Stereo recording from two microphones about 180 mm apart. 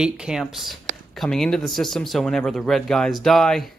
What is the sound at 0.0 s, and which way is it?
Speech, 5° right (ahead or behind).